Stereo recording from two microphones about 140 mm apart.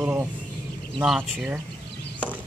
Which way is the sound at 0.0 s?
15° right (ahead or behind).